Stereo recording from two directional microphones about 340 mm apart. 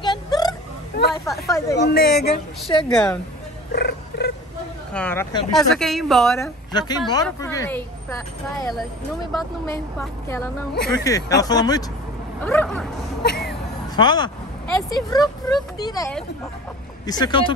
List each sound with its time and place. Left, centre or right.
0.0 s hiccup: centre
1.2 s speech: centre
1.8 s speech: left
2.9 s speech: centre
3.7 s a sound: left
4.9 s speech: centre
6.7 s speech: centre
9.3 s speech: centre
13.2 s a sound: left
13.9 s speech: centre